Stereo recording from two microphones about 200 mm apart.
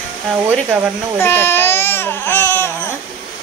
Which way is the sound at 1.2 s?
10° left (ahead or behind).